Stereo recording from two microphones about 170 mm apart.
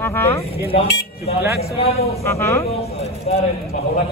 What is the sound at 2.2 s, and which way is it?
Speech, 15° left (ahead or behind).